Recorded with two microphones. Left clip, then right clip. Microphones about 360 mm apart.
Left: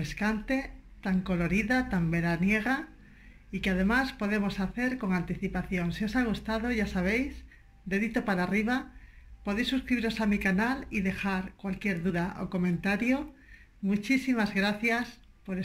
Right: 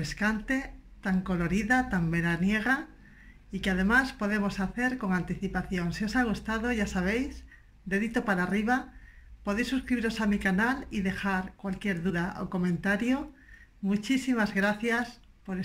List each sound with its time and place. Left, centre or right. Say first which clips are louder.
0.0 s speech: right 2 dB; centre